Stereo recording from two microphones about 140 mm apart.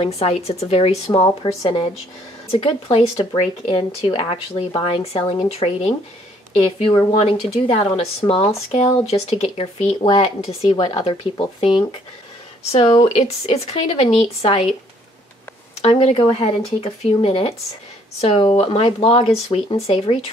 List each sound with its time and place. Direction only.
0.0 s a woman's voice: 50° left (ahead or behind)
10.8 s a woman's voice: 35° left (ahead or behind)
13.0 s speech: 50° left (ahead or behind)
15.8 s speech: 45° left (ahead or behind)